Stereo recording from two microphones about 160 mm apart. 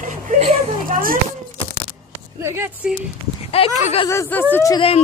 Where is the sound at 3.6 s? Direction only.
40° left (ahead or behind).